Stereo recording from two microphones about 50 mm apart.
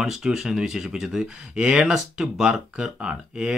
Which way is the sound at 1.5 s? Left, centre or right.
Right.